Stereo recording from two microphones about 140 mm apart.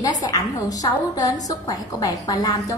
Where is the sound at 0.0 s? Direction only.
25° left (ahead or behind).